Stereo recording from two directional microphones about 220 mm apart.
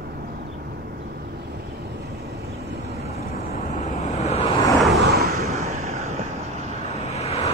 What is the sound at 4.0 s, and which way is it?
Vehicle, 30° left (ahead or behind).